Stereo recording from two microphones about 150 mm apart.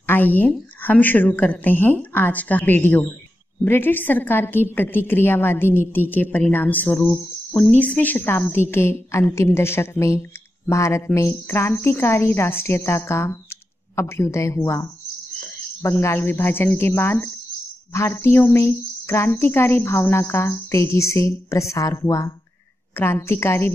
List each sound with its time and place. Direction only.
0.0 s a woman's voice: 15° left (ahead or behind)